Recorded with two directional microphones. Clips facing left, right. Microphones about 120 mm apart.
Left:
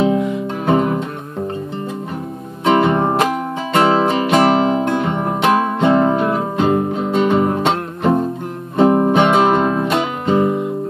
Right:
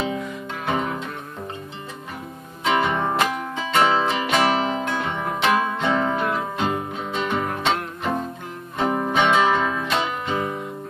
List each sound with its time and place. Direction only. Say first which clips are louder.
0.7 s music: left 9 dB; 45° left (ahead or behind)
2.6 s music: left 7 dB; 40° left (ahead or behind)